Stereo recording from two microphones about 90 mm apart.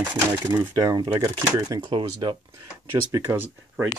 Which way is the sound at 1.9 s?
60° right (ahead or behind).